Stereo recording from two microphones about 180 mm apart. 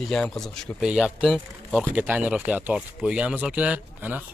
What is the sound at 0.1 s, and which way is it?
Speech, 5° left (ahead or behind).